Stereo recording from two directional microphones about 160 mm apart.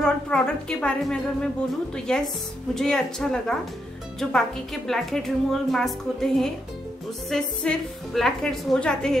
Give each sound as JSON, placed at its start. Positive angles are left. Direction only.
{"t": 0.0, "sound": "a woman's voice", "side_deg": 5}